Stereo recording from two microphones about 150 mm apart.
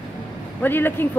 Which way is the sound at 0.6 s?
15° left (ahead or behind).